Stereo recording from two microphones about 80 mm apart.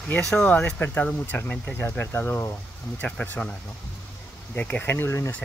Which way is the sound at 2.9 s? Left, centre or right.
Centre.